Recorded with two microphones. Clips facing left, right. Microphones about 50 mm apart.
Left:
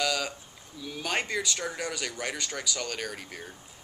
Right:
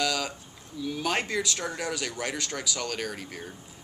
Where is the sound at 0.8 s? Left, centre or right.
Centre.